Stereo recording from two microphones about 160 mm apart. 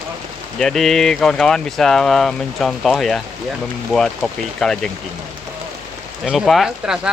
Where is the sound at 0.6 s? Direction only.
5° left (ahead or behind).